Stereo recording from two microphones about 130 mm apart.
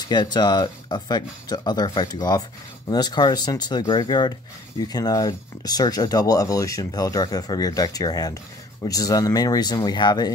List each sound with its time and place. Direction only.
0.0 s speech: 35° left (ahead or behind)